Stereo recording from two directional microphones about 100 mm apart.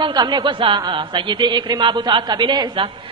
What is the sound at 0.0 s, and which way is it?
A woman's voice, 45° right (ahead or behind).